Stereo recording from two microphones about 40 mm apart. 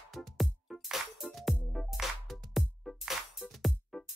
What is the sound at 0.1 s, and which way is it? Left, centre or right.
Music, centre.